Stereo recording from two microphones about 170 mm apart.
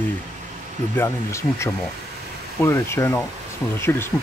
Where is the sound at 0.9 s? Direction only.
15° left (ahead or behind).